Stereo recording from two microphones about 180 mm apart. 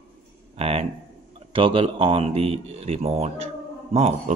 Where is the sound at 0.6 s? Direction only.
35° right (ahead or behind).